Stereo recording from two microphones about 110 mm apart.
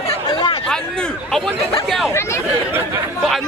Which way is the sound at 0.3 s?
45° left (ahead or behind).